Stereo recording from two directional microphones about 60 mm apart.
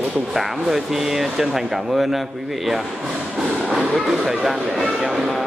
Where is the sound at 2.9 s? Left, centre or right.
Centre.